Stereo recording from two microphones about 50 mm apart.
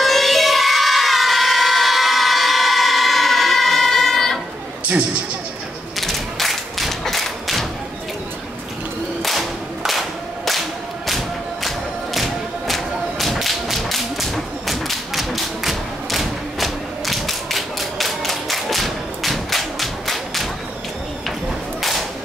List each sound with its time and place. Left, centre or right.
0.0 s crowd: centre
5.9 s thump: centre
9.2 s a sound: centre
11.1 s music: centre